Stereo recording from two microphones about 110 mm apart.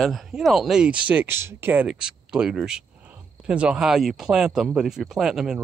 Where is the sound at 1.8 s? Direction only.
5° right (ahead or behind).